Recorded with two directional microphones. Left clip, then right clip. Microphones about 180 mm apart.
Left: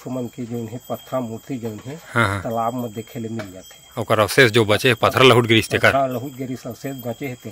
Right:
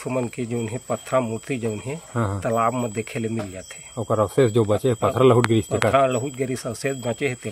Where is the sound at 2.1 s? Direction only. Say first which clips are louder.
Left 9 dB; 30° left (ahead or behind).